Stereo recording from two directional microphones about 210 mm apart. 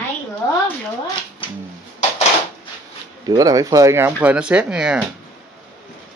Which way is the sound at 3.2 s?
15° right (ahead or behind).